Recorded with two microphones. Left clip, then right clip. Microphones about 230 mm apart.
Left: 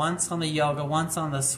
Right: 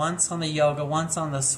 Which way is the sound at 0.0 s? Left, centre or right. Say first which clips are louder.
Right 1 dB; centre.